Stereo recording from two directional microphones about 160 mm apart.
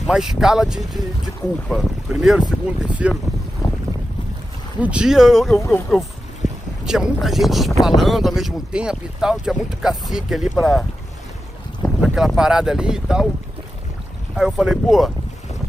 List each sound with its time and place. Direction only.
0.0 s speech: 5° right (ahead or behind)
3.6 s boat: 25° left (ahead or behind)
4.8 s speech: 5° right (ahead or behind)
12.0 s boat: 5° right (ahead or behind)
12.4 s speech: 5° right (ahead or behind)
14.3 s speech: centre (ahead or behind)